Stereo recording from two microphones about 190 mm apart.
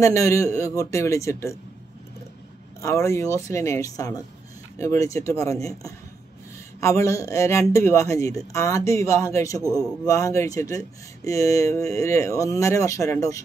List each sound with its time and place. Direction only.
0.0 s speech: 15° left (ahead or behind)
2.8 s speech: 15° left (ahead or behind)